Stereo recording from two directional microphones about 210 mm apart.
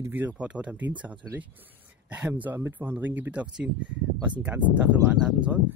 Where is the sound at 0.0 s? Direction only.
10° right (ahead or behind).